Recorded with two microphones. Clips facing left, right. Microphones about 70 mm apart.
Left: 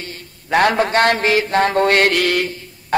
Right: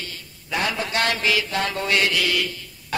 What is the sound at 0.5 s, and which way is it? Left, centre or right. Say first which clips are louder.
Mantra: left 10 dB; left.